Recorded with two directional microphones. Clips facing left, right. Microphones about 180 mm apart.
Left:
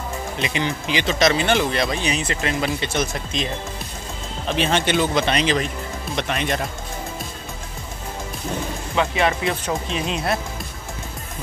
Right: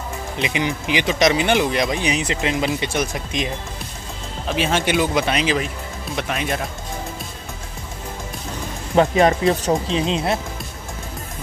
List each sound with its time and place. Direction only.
0.4 s speech: 15° right (ahead or behind)
4.5 s speech: 5° right (ahead or behind)
8.9 s speech: 40° right (ahead or behind); by 10.4 s 25° right (ahead or behind)